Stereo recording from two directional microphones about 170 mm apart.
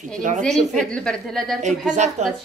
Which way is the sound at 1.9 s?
45° right (ahead or behind).